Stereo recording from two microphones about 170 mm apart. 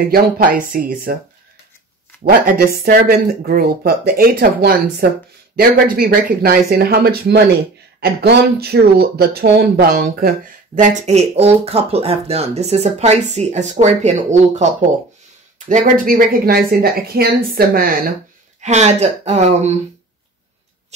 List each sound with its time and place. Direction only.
0.0 s speech: 55° right (ahead or behind)
2.6 s speech: 60° right (ahead or behind); by 14.7 s 45° right (ahead or behind)
15.7 s speech: 55° right (ahead or behind)
18.6 s speech: 40° right (ahead or behind)